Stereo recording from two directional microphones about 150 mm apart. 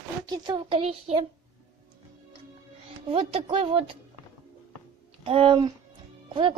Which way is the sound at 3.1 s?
35° right (ahead or behind).